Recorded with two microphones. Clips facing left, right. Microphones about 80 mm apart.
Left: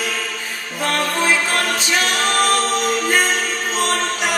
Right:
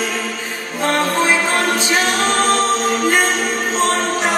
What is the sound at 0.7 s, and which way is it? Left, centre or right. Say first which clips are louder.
A capella: right 3 dB; right.